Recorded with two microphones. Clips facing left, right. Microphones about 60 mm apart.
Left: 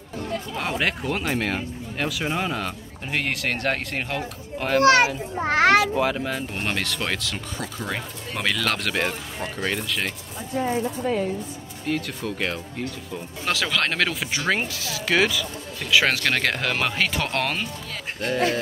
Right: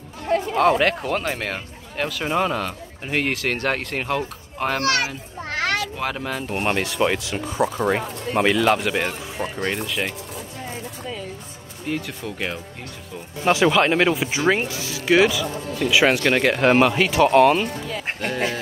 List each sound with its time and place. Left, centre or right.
0.6 s a child's voice: centre
4.8 s children playing: left
5.9 s speech: centre
6.6 s speech: centre
11.9 s speech: centre
13.5 s speech: right